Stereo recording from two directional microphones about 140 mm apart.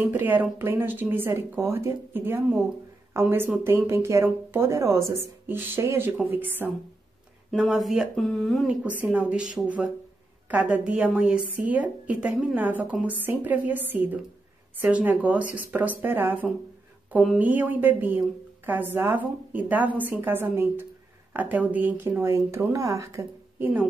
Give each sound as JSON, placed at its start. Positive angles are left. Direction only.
{"t": 0.0, "sound": "speech", "side_deg": -15}
{"t": 7.5, "sound": "speech", "side_deg": 0}
{"t": 8.8, "sound": "speech", "side_deg": -10}